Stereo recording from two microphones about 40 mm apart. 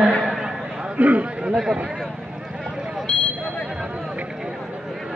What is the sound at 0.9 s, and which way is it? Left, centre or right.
Speech, right.